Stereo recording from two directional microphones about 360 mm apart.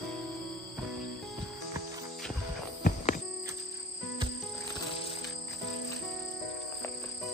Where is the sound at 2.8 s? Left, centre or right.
Left.